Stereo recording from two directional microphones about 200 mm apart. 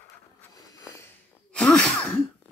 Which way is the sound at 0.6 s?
15° left (ahead or behind).